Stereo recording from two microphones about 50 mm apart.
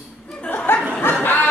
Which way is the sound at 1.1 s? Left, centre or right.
Left.